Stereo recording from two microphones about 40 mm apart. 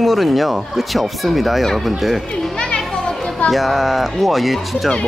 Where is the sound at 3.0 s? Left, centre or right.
Left.